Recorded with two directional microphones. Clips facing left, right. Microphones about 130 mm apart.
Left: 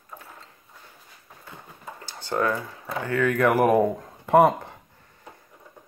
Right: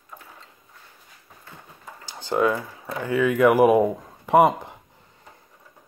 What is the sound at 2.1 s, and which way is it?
Speech, 15° right (ahead or behind).